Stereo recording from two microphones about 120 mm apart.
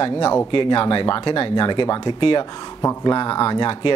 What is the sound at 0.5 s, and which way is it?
Speech, 45° left (ahead or behind).